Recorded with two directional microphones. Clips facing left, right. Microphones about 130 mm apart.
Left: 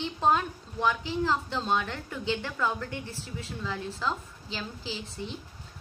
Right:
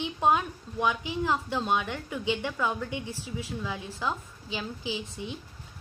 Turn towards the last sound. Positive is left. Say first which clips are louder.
# right 2 dB
turn(degrees=-10)  # may be behind; listen again after turning